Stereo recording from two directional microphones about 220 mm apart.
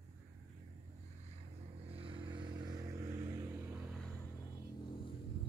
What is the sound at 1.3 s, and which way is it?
Vehicle, 25° right (ahead or behind).